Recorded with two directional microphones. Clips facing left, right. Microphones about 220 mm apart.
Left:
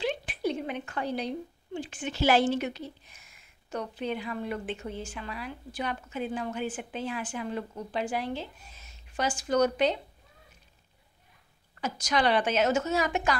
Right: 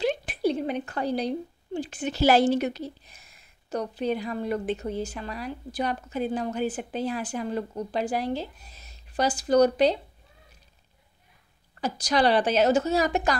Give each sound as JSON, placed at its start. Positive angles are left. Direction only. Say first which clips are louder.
{"t": 0.0, "sound": "a woman's voice", "louder": "right 5 dB", "side_deg": -40}
{"t": 11.8, "sound": "a woman's voice", "louder": "right 4 dB", "side_deg": -35}